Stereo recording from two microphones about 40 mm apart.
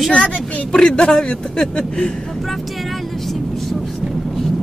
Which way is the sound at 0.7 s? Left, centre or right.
Centre.